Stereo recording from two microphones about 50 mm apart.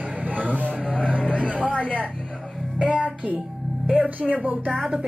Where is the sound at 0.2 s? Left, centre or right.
Right.